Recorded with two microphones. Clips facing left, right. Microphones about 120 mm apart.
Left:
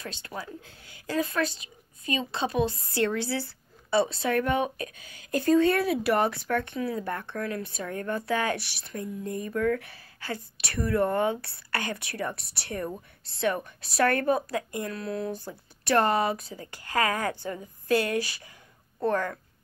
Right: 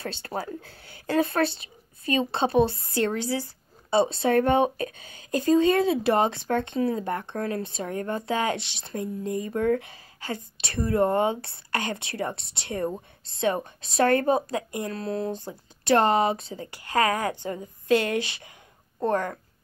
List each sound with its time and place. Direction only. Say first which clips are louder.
0.0 s a woman's voice: right 6 dB; 35° right (ahead or behind)
1.0 s speech: right 5 dB; 60° right (ahead or behind)
1.3 s a woman's voice: right 4 dB; 30° right (ahead or behind)